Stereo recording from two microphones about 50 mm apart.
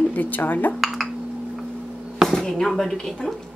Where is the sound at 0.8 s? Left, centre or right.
Centre.